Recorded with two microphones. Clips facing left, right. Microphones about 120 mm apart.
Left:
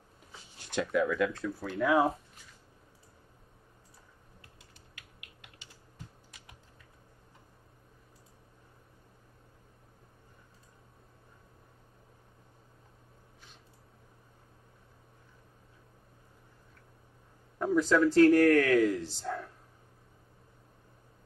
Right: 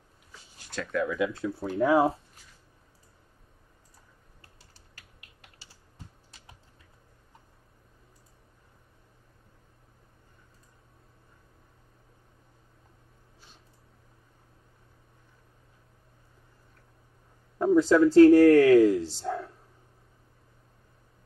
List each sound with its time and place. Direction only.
0.9 s speech: centre (ahead or behind)
1.4 s speech: 25° right (ahead or behind)
4.6 s typing: 35° right (ahead or behind)
17.6 s speech: 30° right (ahead or behind)